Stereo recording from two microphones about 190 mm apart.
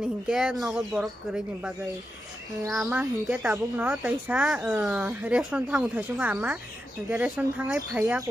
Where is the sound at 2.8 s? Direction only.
10° right (ahead or behind).